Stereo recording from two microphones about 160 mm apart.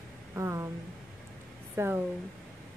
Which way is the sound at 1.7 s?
15° right (ahead or behind).